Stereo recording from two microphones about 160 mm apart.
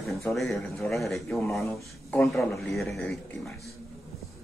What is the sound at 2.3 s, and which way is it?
Speech, centre (ahead or behind).